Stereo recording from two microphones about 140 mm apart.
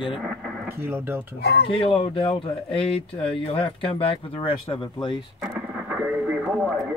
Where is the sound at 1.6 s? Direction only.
40° left (ahead or behind).